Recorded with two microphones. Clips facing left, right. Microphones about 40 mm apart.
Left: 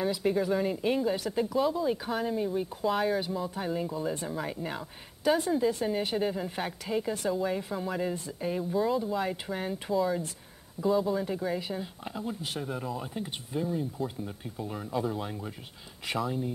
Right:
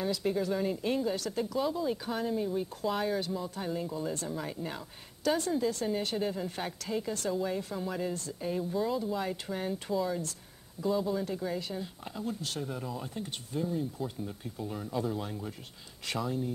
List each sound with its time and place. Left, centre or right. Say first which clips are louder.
0.0 s speech: left 3 dB; centre